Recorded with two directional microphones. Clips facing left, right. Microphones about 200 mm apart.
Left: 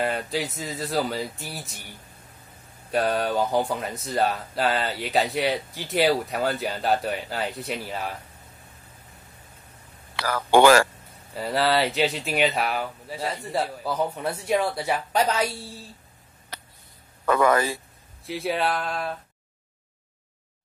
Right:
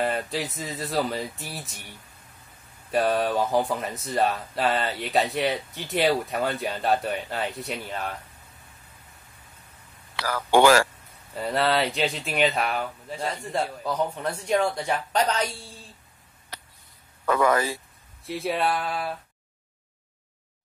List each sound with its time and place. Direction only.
0.0 s speech: centre (ahead or behind)
2.9 s speech: centre (ahead or behind)
10.1 s speech: 55° left (ahead or behind)
11.3 s speech: centre (ahead or behind)
17.3 s speech: 60° left (ahead or behind)
18.2 s speech: centre (ahead or behind)